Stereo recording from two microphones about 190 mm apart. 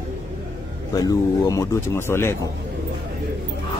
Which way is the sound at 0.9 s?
20° left (ahead or behind).